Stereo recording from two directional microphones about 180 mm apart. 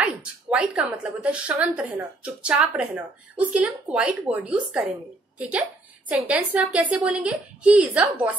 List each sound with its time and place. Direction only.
0.0 s a woman's voice: 5° right (ahead or behind)